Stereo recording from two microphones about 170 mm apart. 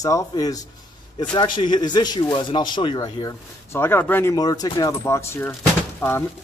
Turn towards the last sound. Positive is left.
turn(degrees=15)  # may be behind; listen again after turning